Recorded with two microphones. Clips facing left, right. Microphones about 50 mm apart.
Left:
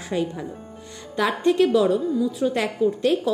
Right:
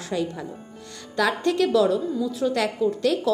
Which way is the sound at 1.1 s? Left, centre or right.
Left.